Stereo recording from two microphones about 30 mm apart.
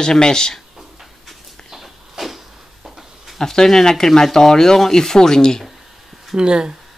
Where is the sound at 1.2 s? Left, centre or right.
Centre.